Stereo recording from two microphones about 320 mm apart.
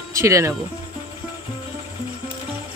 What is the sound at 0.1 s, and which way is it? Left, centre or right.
Speech, centre.